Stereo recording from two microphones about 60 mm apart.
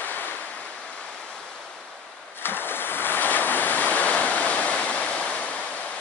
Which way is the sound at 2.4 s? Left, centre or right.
Left.